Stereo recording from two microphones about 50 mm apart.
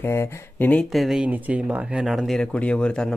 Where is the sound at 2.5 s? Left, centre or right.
Left.